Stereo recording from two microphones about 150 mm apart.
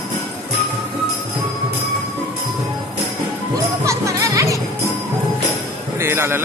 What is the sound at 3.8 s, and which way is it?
Music, 20° right (ahead or behind).